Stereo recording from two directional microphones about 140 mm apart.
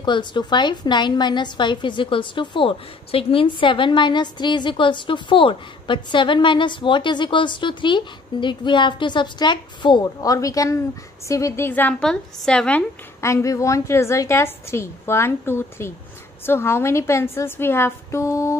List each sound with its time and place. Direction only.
0.0 s a woman's voice: 35° left (ahead or behind); by 12.8 s 5° left (ahead or behind)
13.2 s a woman's voice: 20° left (ahead or behind)